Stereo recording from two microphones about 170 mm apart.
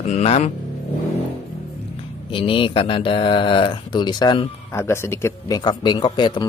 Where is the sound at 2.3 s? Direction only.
30° left (ahead or behind).